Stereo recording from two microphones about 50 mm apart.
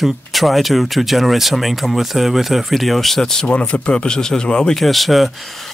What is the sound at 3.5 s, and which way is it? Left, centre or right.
Speech, left.